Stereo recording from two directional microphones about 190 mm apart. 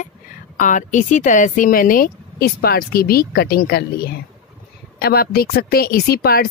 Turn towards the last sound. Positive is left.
turn(degrees=55)  # may be behind; listen again after turning